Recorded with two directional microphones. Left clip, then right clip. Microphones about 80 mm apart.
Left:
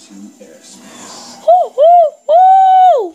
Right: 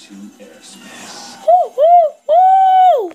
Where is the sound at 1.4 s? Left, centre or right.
Centre.